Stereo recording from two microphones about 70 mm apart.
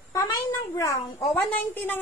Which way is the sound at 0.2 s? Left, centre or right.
Left.